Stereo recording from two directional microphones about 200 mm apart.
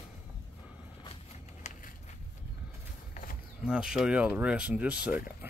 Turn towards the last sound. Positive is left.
turn(degrees=-5)  # may be behind; listen again after turning